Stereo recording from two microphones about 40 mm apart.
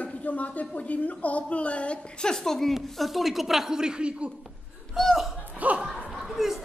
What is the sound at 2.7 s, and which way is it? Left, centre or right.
Speech, centre.